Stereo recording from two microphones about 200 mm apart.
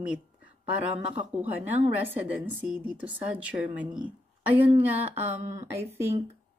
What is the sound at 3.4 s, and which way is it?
Speech, 5° right (ahead or behind).